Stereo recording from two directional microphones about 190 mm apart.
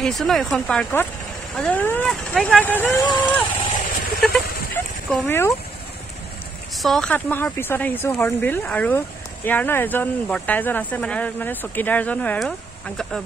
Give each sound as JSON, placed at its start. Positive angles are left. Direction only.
{"t": 0.0, "sound": "speech", "side_deg": 0}
{"t": 2.8, "sound": "speech", "side_deg": 15}
{"t": 4.2, "sound": "speech", "side_deg": 5}
{"t": 6.8, "sound": "speech", "side_deg": 0}